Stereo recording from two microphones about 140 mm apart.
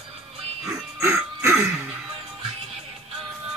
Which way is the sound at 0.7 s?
15° right (ahead or behind).